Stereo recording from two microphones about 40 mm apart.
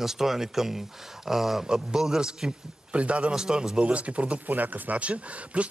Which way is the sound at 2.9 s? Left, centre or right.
Right.